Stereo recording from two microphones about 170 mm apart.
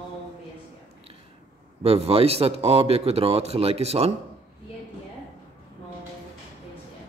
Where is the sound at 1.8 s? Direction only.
35° right (ahead or behind).